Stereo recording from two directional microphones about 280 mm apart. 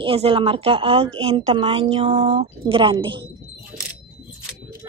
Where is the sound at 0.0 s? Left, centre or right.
Centre.